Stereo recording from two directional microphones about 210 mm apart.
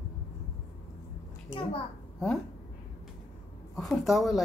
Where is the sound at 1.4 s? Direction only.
25° left (ahead or behind).